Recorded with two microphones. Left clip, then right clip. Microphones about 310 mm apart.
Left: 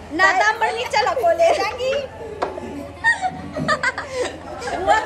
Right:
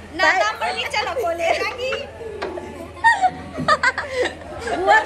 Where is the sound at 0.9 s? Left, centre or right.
Left.